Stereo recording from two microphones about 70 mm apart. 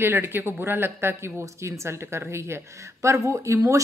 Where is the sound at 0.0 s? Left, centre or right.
Right.